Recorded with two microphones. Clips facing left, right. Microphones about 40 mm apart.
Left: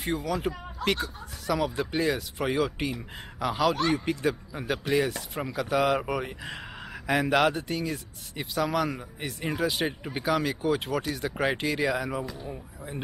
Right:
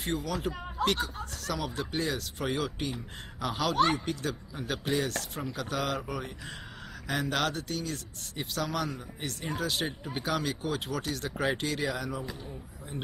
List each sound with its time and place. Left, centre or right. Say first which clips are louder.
0.0 s speech: left 3 dB; centre
5.9 s speech: left 6 dB; centre